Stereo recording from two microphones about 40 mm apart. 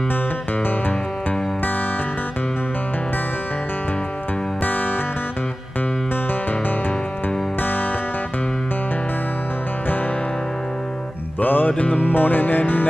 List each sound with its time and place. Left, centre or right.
4.6 s music: left
7.6 s music: left
11.3 s music: left